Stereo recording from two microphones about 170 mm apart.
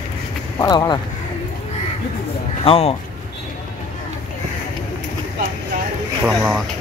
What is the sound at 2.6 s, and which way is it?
Speech, 35° left (ahead or behind).